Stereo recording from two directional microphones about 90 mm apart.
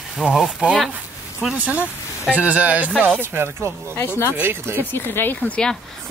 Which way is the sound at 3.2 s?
25° right (ahead or behind).